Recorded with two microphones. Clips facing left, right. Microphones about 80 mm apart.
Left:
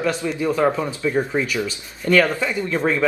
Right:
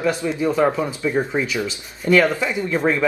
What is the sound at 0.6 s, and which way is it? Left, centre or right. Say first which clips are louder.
Speech: even; centre.